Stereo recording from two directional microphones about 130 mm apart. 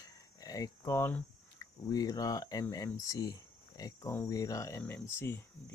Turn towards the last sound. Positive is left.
turn(degrees=20)  # may be behind; listen again after turning